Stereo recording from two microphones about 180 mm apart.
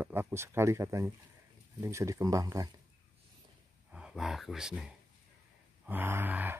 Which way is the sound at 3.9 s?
5° right (ahead or behind).